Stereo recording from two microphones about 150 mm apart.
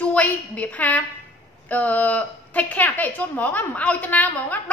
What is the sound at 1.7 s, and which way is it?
A woman's voice, 10° left (ahead or behind).